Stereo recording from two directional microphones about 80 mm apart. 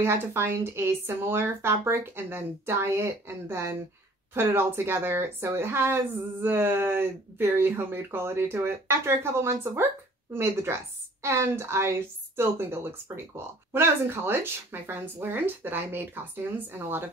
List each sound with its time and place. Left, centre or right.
0.0 s speech: right